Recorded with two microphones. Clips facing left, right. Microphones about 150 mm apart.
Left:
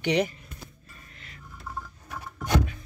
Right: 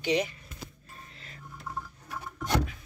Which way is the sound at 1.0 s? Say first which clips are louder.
Right 1 dB; 35° right (ahead or behind).